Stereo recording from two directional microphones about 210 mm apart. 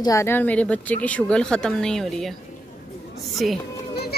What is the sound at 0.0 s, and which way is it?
Speech, 15° left (ahead or behind).